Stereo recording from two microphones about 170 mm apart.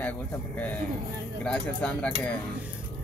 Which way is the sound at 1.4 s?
5° left (ahead or behind).